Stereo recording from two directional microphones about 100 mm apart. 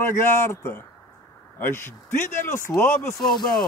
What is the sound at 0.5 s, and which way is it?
A man's voice, 25° left (ahead or behind).